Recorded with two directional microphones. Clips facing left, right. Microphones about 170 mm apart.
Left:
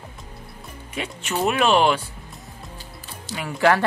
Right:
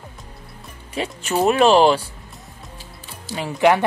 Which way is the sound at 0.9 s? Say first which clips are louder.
Right 5 dB; 35° right (ahead or behind).